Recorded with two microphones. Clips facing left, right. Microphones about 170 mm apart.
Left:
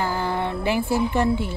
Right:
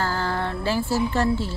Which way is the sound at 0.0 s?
15° left (ahead or behind).